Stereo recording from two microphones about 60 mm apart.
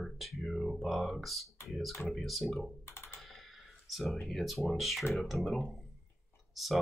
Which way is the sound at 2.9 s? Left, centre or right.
Left.